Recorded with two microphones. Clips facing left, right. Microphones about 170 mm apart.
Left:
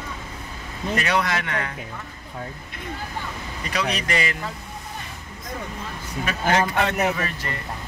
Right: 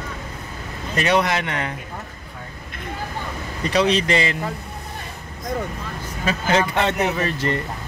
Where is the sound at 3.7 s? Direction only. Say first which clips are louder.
Right 7 dB; 30° right (ahead or behind).